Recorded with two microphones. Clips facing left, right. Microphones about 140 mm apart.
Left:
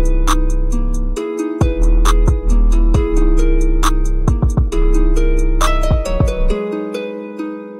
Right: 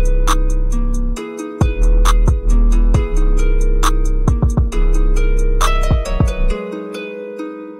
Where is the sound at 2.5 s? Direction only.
25° left (ahead or behind).